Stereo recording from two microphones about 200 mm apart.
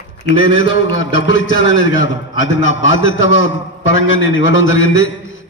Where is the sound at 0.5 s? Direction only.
75° left (ahead or behind).